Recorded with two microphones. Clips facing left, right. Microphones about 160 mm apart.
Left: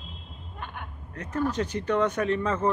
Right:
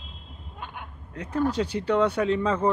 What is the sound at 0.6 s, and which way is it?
Speech, 10° right (ahead or behind).